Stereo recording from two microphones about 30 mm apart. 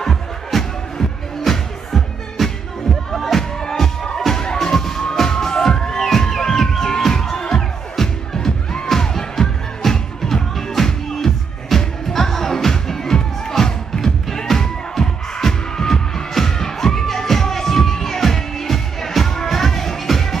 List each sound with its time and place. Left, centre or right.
0.0 s music: centre
4.6 s music: centre